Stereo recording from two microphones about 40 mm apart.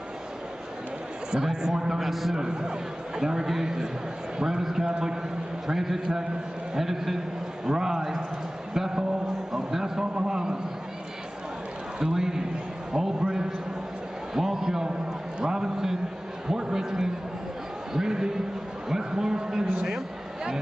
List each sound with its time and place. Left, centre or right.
1.3 s speech: centre
2.0 s a man's voice: centre
2.3 s a man's voice: centre
9.5 s a sound: centre
10.1 s speech: centre
12.0 s a man's voice: centre
16.4 s a sound: centre